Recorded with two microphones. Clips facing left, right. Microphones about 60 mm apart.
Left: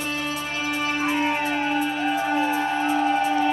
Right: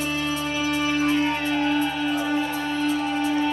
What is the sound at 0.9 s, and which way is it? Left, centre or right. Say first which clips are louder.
Music: even; centre.